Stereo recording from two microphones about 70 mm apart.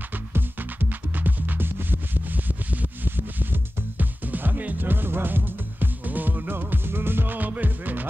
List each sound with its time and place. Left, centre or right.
0.3 s music: right